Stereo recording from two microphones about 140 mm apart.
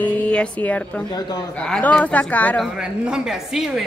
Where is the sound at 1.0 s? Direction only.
30° left (ahead or behind).